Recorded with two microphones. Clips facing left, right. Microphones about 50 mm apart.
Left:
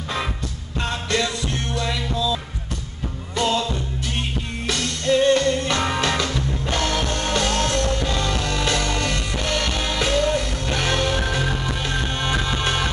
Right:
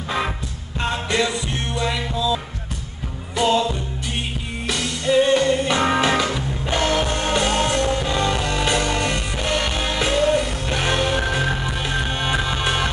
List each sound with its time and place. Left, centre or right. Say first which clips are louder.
0.7 s music: right 2 dB; centre